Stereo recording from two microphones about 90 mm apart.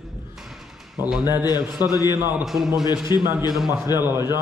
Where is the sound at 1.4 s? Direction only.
45° left (ahead or behind).